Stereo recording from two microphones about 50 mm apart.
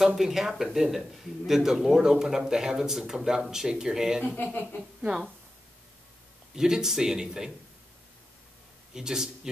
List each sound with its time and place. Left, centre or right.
0.0 s speech: centre
4.2 s speech: left
6.5 s speech: centre
8.9 s a man's voice: centre